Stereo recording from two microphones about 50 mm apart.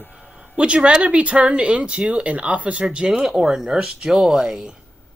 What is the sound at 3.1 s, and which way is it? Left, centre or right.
Speech, centre.